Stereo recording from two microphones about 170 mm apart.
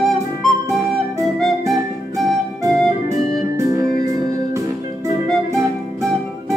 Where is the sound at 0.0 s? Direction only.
Centre (ahead or behind).